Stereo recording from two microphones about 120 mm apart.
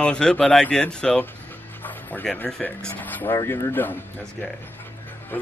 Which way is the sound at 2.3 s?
15° left (ahead or behind).